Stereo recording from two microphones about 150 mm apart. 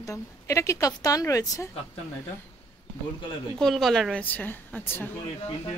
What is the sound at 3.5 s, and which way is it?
A woman's voice, centre (ahead or behind).